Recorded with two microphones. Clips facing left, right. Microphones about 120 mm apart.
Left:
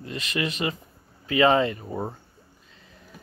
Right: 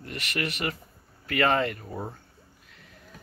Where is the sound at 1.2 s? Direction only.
15° left (ahead or behind).